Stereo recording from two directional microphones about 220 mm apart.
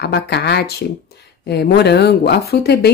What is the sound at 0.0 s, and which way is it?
Speech, 50° left (ahead or behind).